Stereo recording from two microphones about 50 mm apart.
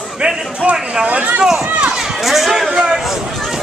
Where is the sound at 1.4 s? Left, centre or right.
Centre.